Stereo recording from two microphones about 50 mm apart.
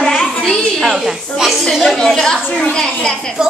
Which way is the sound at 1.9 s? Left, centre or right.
Centre.